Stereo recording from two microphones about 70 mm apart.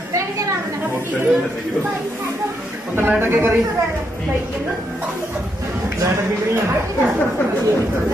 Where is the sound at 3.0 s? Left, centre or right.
Right.